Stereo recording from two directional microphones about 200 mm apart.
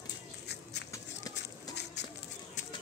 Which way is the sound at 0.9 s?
20° left (ahead or behind).